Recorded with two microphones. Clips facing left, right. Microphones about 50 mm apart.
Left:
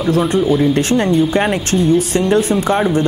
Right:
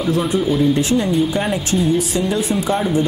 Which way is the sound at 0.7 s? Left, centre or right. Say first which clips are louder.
Left 3 dB; left.